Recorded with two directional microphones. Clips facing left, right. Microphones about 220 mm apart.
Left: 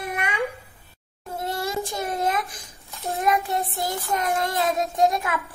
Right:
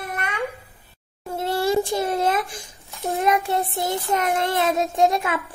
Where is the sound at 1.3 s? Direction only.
30° right (ahead or behind).